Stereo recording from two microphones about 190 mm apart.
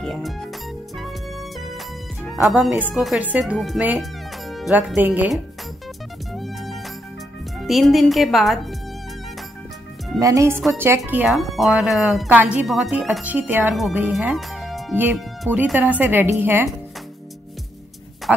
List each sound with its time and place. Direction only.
0.0 s speech: centre (ahead or behind)
2.3 s speech: 15° right (ahead or behind)
2.6 s speech: 5° right (ahead or behind)
6.3 s music: centre (ahead or behind)
7.6 s speech: centre (ahead or behind)
10.2 s speech: 15° right (ahead or behind)
11.0 s speech: 5° right (ahead or behind)